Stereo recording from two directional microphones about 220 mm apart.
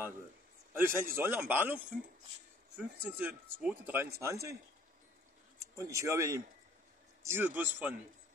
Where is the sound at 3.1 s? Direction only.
10° right (ahead or behind).